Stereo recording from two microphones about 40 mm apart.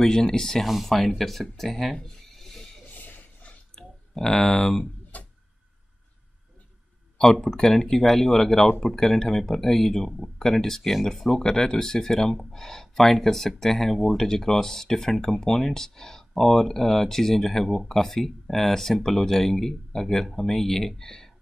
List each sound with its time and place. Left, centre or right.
0.0 s speech: centre
2.3 s a sound: centre
2.9 s a sound: left
3.7 s clicking: centre
5.1 s music: left
7.4 s speech: centre